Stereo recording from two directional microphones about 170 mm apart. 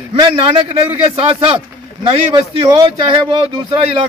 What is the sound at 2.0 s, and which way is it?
Speech, 25° right (ahead or behind).